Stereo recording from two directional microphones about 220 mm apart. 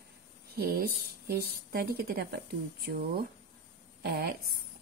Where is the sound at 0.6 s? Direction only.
45° right (ahead or behind).